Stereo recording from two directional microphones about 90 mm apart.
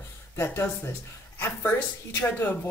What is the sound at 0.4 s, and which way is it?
Speech, 30° left (ahead or behind).